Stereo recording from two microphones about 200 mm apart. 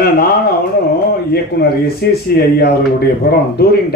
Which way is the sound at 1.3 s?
50° left (ahead or behind).